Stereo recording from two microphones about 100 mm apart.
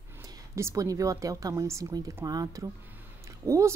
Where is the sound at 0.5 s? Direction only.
30° right (ahead or behind).